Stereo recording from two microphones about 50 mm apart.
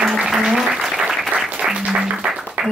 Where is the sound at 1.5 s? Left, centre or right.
Right.